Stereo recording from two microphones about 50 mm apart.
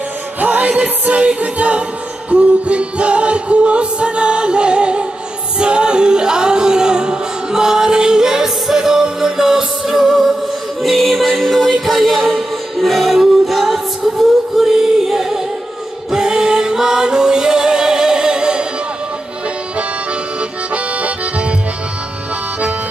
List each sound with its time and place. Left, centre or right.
0.4 s music: right
20.3 s accordion: right